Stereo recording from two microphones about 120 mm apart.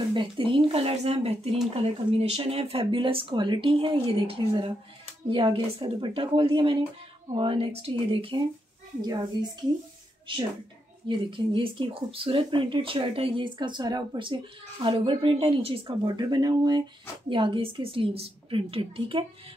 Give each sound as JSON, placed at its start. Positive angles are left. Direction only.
{"t": 0.1, "sound": "speech", "side_deg": -45}
{"t": 9.0, "sound": "a woman's voice", "side_deg": -35}
{"t": 11.1, "sound": "speech", "side_deg": -45}
{"t": 13.6, "sound": "a woman's voice", "side_deg": -35}